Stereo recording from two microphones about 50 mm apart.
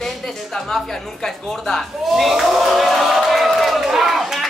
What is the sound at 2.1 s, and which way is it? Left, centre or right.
Speech, centre.